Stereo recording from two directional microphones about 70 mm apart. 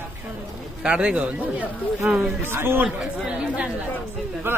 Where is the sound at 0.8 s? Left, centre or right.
Centre.